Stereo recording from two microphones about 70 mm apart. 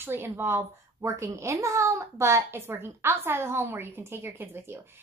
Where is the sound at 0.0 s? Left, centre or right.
Right.